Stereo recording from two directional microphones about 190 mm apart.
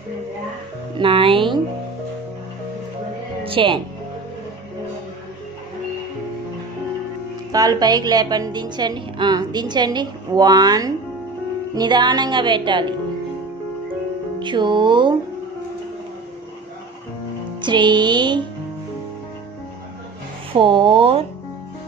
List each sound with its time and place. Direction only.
0.9 s a woman's voice: 25° right (ahead or behind)
3.4 s speech: 25° right (ahead or behind)
7.5 s a woman's voice: 20° right (ahead or behind)
14.4 s a woman's voice: 25° right (ahead or behind)
17.6 s a woman's voice: 25° right (ahead or behind)
20.5 s a woman's voice: 25° right (ahead or behind)